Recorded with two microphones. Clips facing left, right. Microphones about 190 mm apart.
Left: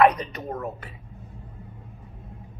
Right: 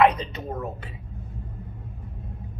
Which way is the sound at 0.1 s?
25° right (ahead or behind).